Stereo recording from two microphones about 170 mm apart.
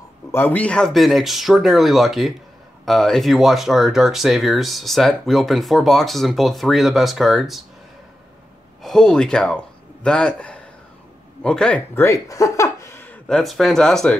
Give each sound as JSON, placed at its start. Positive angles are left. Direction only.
{"t": 0.3, "sound": "speech", "side_deg": 10}
{"t": 8.8, "sound": "speech", "side_deg": 5}